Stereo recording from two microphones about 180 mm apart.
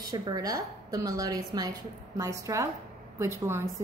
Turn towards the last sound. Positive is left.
turn(degrees=-15)  # may be behind; listen again after turning